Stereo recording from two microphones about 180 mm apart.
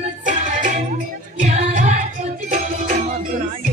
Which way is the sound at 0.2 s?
45° right (ahead or behind).